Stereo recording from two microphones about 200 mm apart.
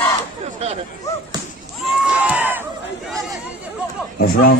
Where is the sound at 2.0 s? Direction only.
5° right (ahead or behind).